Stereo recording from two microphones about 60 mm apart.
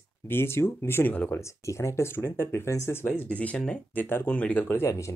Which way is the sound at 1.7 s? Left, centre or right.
Left.